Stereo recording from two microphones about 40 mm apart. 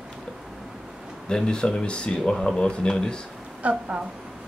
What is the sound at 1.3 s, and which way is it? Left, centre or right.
Speech, left.